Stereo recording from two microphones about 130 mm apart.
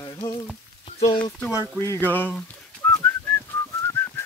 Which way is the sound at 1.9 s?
15° left (ahead or behind).